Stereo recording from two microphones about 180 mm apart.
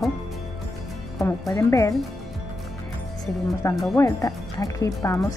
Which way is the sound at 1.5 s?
15° left (ahead or behind).